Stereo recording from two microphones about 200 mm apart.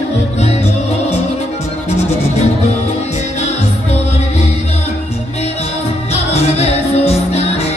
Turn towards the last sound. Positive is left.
turn(degrees=30)  # may be behind; listen again after turning